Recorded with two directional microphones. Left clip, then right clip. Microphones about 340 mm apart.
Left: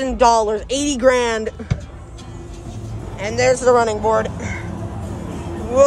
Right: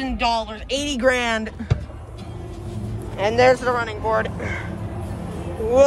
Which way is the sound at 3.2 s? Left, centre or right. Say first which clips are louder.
Right 1 dB; centre.